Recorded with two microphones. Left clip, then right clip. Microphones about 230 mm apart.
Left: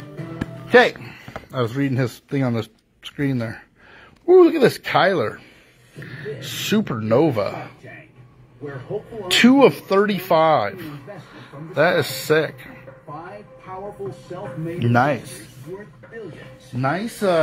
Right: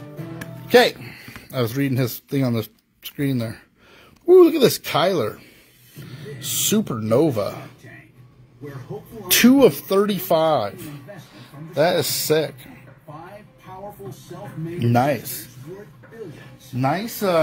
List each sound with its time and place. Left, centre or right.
0.7 s music: centre
1.1 s speech: right
6.5 s speech: right
9.3 s speech: right; by 12.7 s centre
14.8 s speech: centre
16.8 s speech: centre